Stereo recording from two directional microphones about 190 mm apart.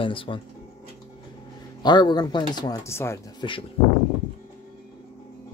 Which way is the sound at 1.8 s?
25° left (ahead or behind).